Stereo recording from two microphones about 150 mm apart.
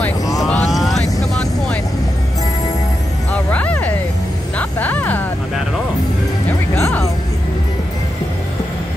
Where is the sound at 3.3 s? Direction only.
10° left (ahead or behind).